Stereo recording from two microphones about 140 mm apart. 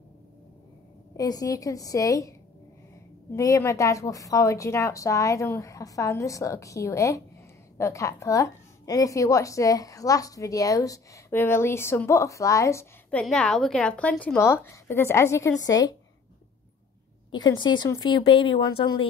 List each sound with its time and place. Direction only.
1.1 s a woman's voice: 25° left (ahead or behind)
3.3 s a woman's voice: 20° left (ahead or behind)
13.1 s speech: 5° left (ahead or behind); by 16.0 s 25° left (ahead or behind)
17.3 s speech: 30° left (ahead or behind)